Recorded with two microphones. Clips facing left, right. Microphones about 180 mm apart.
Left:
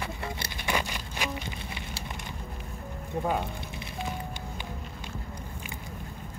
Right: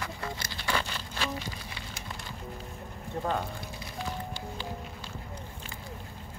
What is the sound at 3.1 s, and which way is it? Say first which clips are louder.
Speech: left 3 dB; 10° left (ahead or behind).